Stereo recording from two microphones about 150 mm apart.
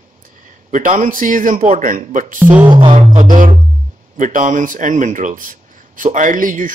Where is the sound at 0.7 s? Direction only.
60° right (ahead or behind).